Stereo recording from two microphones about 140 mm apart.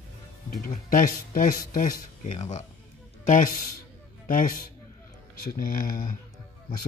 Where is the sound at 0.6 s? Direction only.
80° left.